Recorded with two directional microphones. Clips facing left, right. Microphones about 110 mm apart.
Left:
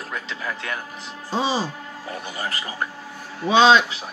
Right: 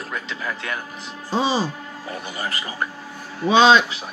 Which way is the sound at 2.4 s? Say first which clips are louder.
Right 1 dB; 35° left (ahead or behind).